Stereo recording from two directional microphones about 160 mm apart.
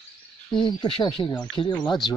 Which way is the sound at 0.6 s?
30° left (ahead or behind).